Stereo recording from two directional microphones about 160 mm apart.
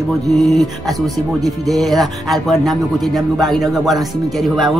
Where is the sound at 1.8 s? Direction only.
Centre (ahead or behind).